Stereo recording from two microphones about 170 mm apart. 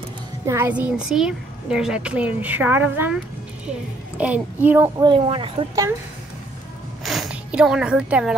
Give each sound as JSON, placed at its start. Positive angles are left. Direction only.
{"t": 0.5, "sound": "a child's voice", "side_deg": -10}
{"t": 4.2, "sound": "a child's voice", "side_deg": -10}
{"t": 5.0, "sound": "speech", "side_deg": -30}
{"t": 7.1, "sound": "speech", "side_deg": -5}